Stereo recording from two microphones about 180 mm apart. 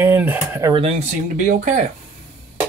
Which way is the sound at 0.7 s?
35° right (ahead or behind).